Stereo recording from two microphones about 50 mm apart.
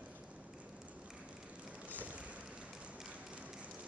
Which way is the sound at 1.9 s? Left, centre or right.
Right.